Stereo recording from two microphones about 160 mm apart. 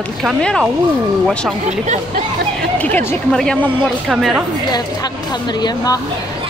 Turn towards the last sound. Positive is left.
turn(degrees=25)  # may be behind; listen again after turning